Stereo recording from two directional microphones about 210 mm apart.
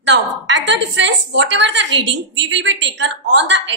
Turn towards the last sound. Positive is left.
turn(degrees=-60)  # may be behind; listen again after turning